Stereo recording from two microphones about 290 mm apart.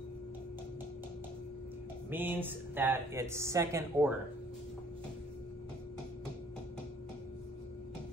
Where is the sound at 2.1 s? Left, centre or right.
Centre.